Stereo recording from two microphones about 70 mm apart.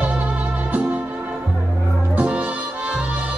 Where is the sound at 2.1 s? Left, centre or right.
Centre.